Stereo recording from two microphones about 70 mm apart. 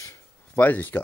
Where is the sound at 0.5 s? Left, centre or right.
Left.